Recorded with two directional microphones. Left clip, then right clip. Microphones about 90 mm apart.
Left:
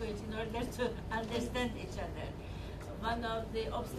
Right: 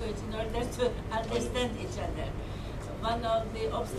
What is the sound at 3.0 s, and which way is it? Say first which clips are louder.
Speech: right 7 dB; 20° right (ahead or behind).